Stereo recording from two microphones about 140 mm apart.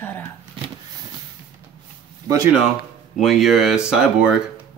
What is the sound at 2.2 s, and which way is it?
Speech, 25° right (ahead or behind).